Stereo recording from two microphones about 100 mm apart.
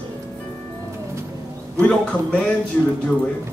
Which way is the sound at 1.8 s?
10° left (ahead or behind).